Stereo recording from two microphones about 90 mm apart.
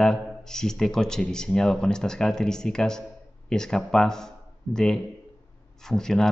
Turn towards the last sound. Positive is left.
turn(degrees=5)  # may be behind; listen again after turning